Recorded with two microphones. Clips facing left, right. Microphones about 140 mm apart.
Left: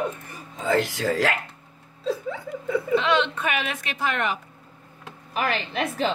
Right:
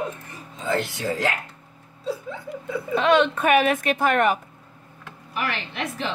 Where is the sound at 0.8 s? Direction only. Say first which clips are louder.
Left 2 dB; 90° left.